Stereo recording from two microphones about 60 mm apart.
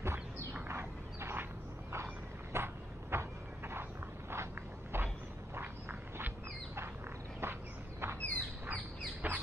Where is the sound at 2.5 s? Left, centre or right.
Right.